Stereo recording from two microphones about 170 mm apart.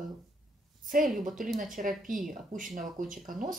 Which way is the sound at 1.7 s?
50° right (ahead or behind).